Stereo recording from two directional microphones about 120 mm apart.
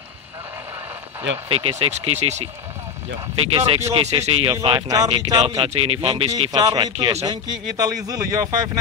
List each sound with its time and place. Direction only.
1.5 s speech: 55° right (ahead or behind)
3.3 s speech: 50° right (ahead or behind)
4.5 s speech: 40° right (ahead or behind)
4.8 s speech: 30° right (ahead or behind)
5.7 s speech: 55° right (ahead or behind)
6.5 s speech: 30° right (ahead or behind)